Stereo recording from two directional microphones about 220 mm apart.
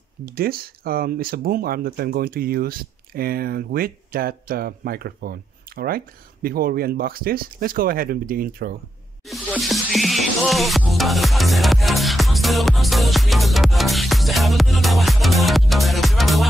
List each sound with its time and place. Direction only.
0.2 s speech: 40° right (ahead or behind)
9.2 s music: centre (ahead or behind)